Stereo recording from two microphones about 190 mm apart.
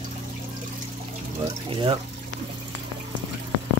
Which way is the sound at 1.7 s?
25° right (ahead or behind).